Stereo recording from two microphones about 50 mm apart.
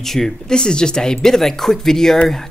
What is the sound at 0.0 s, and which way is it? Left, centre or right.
Speech, centre.